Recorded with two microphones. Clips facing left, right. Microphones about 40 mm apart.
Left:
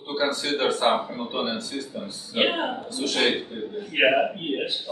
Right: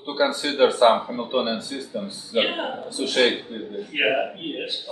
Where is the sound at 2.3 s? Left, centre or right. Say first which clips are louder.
Even; centre.